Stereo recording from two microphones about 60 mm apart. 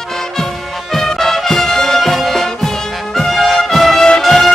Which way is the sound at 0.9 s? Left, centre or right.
Centre.